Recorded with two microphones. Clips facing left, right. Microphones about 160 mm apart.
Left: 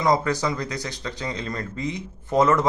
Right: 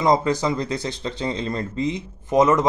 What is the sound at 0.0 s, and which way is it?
Speech, 20° right (ahead or behind).